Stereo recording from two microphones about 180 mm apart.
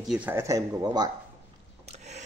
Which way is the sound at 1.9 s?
40° right (ahead or behind).